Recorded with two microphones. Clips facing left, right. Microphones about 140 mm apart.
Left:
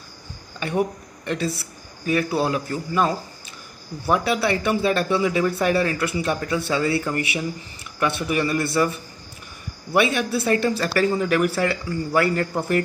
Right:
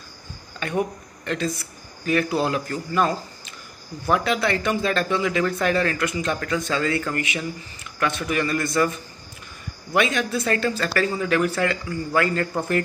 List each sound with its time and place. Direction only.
0.6 s speech: 15° left (ahead or behind)